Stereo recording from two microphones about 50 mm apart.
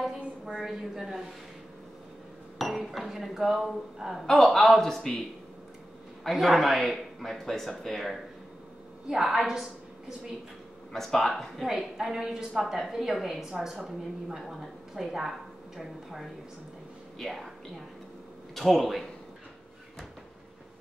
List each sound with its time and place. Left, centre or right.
0.5 s a woman's voice: centre
2.7 s speech: centre
6.4 s speech: centre
9.0 s a woman's voice: centre
10.9 s a woman's voice: centre
18.5 s speech: centre